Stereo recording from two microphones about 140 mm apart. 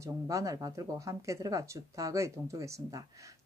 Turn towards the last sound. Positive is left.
turn(degrees=-25)  # may be behind; listen again after turning